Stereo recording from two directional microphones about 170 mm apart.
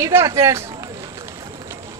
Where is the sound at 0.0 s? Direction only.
15° right (ahead or behind).